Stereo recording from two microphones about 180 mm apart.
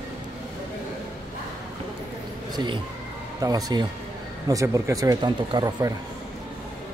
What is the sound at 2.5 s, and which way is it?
Speech, 25° right (ahead or behind).